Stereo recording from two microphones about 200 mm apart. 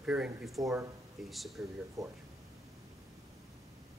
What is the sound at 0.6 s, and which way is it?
Speech, 15° right (ahead or behind).